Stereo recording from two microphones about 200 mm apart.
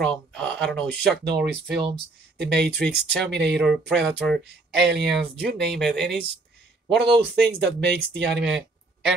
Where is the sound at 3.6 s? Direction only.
Centre (ahead or behind).